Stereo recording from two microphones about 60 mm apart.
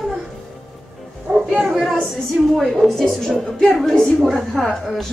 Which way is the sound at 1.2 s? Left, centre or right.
Centre.